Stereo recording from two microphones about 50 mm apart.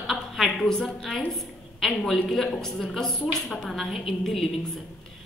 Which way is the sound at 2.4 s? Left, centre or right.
Centre.